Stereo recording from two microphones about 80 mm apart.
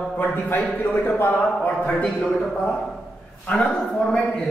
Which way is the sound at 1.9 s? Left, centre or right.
Centre.